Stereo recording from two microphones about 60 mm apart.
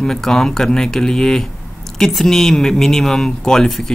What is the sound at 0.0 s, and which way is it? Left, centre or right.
Speech, centre.